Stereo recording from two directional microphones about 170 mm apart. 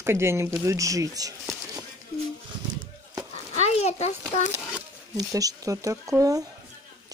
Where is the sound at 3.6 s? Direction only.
40° left (ahead or behind).